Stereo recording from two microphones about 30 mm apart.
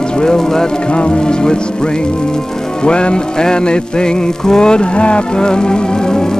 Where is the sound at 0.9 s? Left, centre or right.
Left.